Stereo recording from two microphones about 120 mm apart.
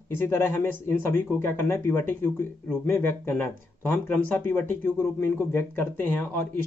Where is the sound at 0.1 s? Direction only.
20° left (ahead or behind).